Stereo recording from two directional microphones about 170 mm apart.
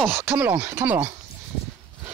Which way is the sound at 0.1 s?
10° right (ahead or behind).